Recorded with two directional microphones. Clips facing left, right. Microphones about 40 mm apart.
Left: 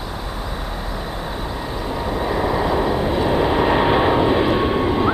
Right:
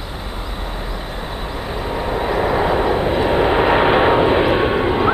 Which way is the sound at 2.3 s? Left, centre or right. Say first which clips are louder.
Right 3 dB; centre.